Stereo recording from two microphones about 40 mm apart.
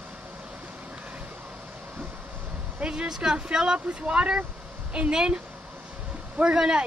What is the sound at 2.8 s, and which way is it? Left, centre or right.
Speech, right.